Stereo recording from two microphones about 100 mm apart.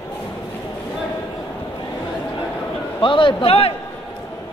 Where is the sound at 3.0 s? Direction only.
55° left (ahead or behind); by 3.7 s 70° left (ahead or behind).